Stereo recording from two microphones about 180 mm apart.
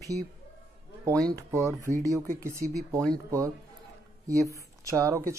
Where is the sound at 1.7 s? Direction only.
45° right (ahead or behind).